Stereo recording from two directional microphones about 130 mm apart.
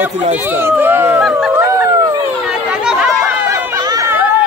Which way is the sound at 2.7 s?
5° right (ahead or behind).